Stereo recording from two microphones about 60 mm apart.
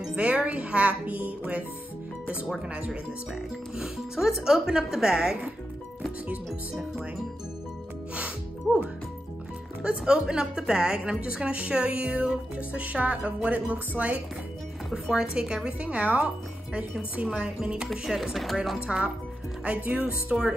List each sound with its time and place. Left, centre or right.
0.1 s speech: centre
2.7 s a woman's voice: centre
9.8 s a woman's voice: centre
14.9 s chopping: centre
15.2 s a woman's voice: centre
17.3 s a woman's voice: centre
18.0 s chopping: centre
19.6 s a woman's voice: centre